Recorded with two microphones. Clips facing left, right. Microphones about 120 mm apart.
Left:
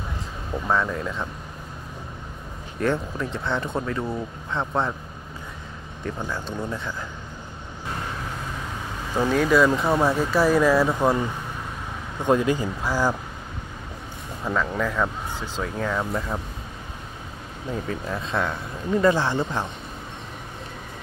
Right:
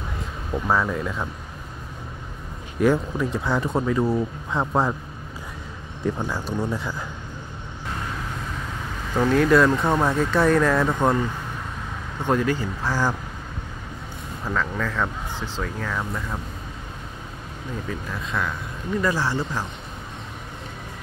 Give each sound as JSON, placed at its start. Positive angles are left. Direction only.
{"t": 0.7, "sound": "speech", "side_deg": 0}
{"t": 2.8, "sound": "speech", "side_deg": -5}
{"t": 6.0, "sound": "speech", "side_deg": -10}
{"t": 9.1, "sound": "speech", "side_deg": 5}
{"t": 12.2, "sound": "speech", "side_deg": 20}
{"t": 14.4, "sound": "speech", "side_deg": 15}
{"t": 15.6, "sound": "speech", "side_deg": 25}
{"t": 18.1, "sound": "speech", "side_deg": 30}